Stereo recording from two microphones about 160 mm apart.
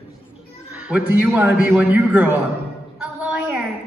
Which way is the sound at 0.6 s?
10° right (ahead or behind).